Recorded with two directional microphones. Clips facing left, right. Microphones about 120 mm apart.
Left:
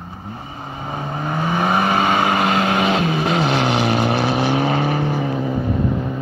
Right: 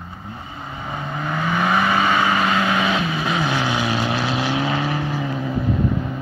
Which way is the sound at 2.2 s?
65° left (ahead or behind).